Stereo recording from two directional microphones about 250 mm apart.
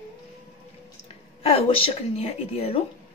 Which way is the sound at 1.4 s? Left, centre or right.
Left.